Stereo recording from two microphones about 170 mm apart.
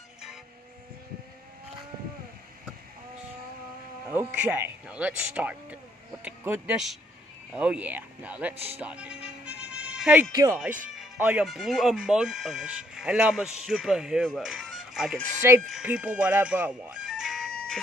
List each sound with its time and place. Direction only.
4.1 s speech: 10° right (ahead or behind)
8.7 s music: 10° right (ahead or behind)
10.3 s speech: 15° right (ahead or behind)
11.0 s music: 10° right (ahead or behind)
11.4 s speech: centre (ahead or behind)